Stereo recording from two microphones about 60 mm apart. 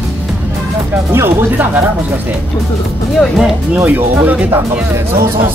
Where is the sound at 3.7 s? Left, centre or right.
Right.